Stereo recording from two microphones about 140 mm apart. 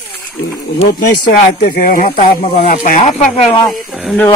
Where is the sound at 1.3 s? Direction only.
90° left.